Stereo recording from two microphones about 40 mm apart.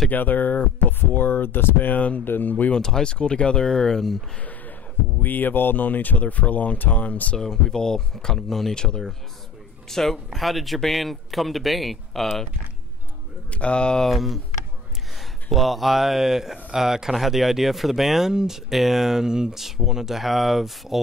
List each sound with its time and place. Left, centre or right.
0.1 s speech: left
2.0 s speech: left
2.7 s speech: centre
5.2 s speech: left
7.3 s speech: centre
9.8 s a man's voice: centre
13.5 s speech: left
14.0 s a man's voice: centre
15.5 s speech: centre